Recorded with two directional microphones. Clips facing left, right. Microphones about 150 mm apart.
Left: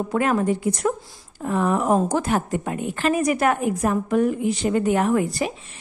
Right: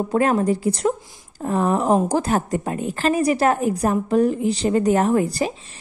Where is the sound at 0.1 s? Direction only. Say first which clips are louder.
Right 2 dB; 35° right (ahead or behind).